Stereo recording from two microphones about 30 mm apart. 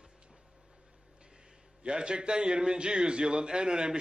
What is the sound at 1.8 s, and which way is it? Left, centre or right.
A man's voice, right.